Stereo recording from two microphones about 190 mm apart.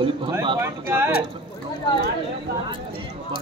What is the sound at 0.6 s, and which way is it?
Speech, 10° right (ahead or behind).